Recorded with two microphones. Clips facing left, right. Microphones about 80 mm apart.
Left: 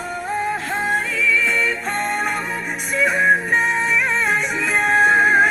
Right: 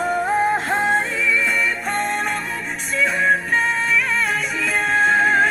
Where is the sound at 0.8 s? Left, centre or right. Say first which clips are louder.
Even; centre.